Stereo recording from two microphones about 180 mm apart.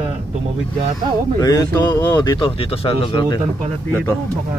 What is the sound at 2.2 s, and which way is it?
Speech, 25° left (ahead or behind).